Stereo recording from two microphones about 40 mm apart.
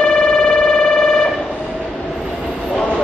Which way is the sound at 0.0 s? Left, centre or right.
Centre.